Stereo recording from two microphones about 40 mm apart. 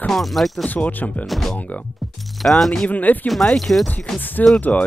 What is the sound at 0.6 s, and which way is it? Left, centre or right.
Speech, left.